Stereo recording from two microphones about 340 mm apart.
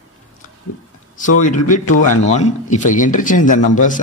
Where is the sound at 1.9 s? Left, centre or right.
Left.